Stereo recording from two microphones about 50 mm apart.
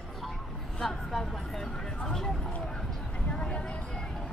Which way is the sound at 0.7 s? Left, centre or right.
Centre.